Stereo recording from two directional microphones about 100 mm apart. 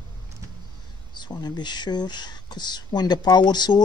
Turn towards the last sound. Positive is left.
turn(degrees=45)  # may be behind; listen again after turning